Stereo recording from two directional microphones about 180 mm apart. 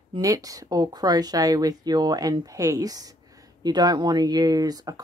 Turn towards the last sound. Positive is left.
turn(degrees=-20)  # may be behind; listen again after turning